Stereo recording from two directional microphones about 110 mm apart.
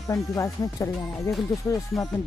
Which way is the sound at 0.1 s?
30° left (ahead or behind).